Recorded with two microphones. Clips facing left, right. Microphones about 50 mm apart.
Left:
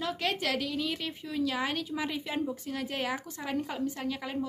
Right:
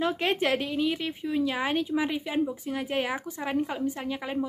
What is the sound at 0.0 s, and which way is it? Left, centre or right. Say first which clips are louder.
Speech: right 5 dB; right.